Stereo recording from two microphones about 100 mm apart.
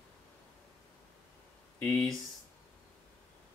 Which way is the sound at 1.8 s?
5° left (ahead or behind).